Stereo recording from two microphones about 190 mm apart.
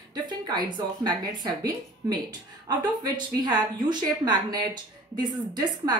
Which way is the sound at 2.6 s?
20° right (ahead or behind).